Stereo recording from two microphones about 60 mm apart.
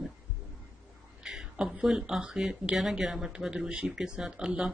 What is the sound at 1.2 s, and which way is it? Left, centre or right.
Speech, centre.